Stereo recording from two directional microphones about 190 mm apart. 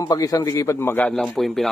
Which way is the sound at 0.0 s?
20° left (ahead or behind).